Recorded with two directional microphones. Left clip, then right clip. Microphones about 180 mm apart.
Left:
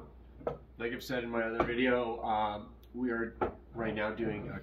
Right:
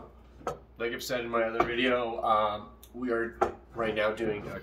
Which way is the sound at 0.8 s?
15° right (ahead or behind).